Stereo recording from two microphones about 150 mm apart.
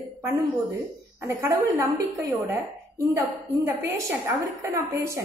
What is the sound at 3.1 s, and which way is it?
A woman's voice, 20° right (ahead or behind).